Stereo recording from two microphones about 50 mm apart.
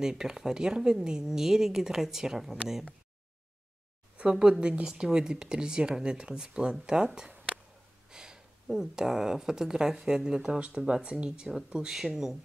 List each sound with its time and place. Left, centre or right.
0.0 s speech: centre
4.2 s speech: centre